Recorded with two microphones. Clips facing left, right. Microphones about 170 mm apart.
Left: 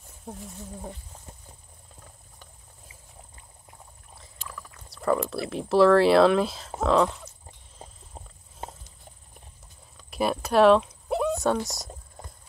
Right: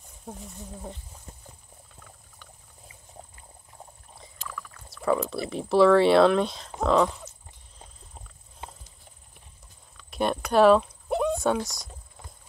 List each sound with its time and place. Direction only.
0.2 s speech: centre (ahead or behind)
4.9 s speech: centre (ahead or behind)
7.8 s horse: 40° left (ahead or behind)
10.1 s speech: 5° left (ahead or behind)
10.5 s a sound: centre (ahead or behind)